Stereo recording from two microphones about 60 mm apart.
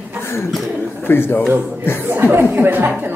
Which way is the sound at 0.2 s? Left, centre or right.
Left.